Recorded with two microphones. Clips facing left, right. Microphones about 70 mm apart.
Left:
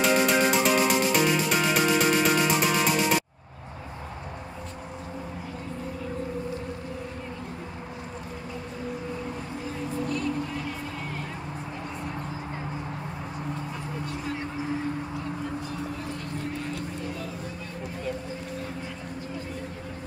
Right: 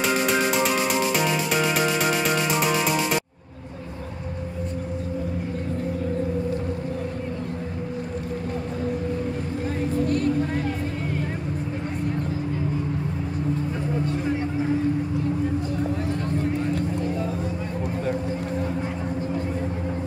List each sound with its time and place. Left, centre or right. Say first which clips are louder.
0.0 s music: even; centre
10.0 s vehicle: right 6 dB; right